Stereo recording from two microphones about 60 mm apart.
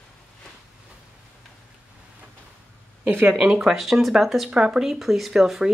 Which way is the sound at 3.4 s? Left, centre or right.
Centre.